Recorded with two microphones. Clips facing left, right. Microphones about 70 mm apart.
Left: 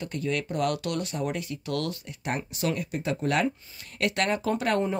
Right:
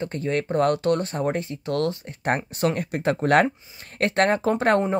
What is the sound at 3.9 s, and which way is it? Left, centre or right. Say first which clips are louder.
Speech: right 6 dB; right.